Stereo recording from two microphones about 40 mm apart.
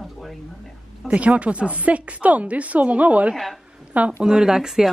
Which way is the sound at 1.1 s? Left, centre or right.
Right.